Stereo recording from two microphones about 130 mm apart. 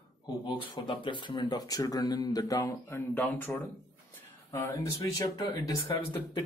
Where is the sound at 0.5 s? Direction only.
40° left (ahead or behind).